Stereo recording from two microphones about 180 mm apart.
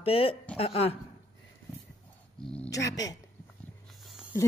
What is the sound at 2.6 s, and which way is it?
Speech, 20° left (ahead or behind).